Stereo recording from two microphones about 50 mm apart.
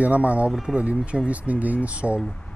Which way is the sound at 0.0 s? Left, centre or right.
Right.